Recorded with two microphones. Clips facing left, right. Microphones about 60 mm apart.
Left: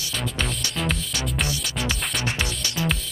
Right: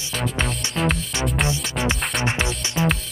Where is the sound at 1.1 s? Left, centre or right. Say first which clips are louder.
Right 4 dB; right.